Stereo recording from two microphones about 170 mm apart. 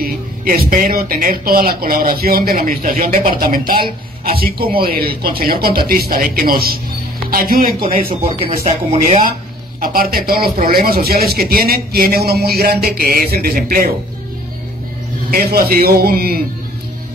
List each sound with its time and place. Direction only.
0.0 s speech: 60° right (ahead or behind)
8.2 s speech: 35° right (ahead or behind)
9.8 s speech: 60° right (ahead or behind)
15.3 s speech: 60° right (ahead or behind)